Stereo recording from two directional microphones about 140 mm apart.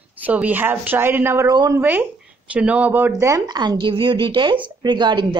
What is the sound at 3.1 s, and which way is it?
Speech, 25° right (ahead or behind).